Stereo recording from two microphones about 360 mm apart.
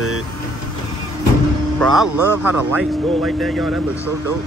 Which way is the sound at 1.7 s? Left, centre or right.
Centre.